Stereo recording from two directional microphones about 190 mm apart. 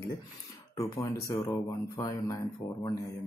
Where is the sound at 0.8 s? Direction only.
15° left (ahead or behind).